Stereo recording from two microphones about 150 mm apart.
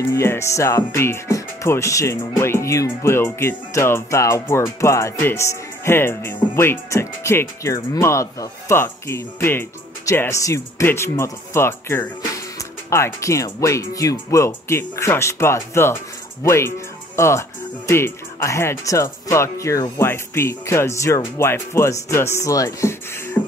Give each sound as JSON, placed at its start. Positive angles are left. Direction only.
{"t": 0.1, "sound": "speech", "side_deg": 20}